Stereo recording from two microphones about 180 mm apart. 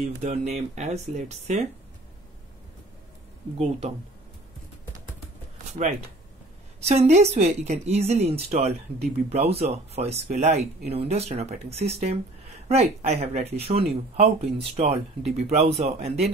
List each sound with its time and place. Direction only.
0.3 s a woman's voice: 35° right (ahead or behind)
3.5 s a woman's voice: 35° right (ahead or behind)
5.7 s a woman's voice: 40° right (ahead or behind)